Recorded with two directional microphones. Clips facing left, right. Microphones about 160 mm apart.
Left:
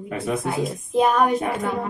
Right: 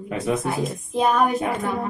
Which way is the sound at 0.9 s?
Centre (ahead or behind).